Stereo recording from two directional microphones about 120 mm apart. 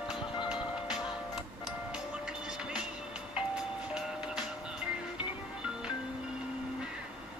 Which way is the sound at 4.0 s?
5° right (ahead or behind).